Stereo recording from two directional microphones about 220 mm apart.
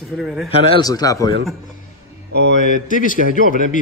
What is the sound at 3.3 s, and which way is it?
Speech, 35° left (ahead or behind).